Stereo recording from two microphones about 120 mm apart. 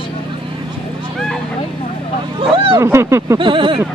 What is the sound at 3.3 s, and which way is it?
Speech, 45° right (ahead or behind).